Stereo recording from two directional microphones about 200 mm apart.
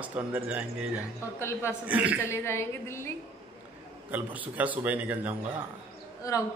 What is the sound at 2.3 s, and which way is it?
Speech, 10° left (ahead or behind).